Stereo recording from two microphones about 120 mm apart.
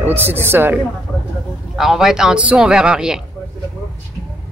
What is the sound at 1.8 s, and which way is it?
Speech, 5° right (ahead or behind).